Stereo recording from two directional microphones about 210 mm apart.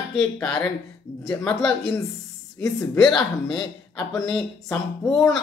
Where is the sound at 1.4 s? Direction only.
5° left (ahead or behind).